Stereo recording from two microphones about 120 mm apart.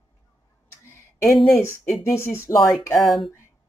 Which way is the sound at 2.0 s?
20° left (ahead or behind).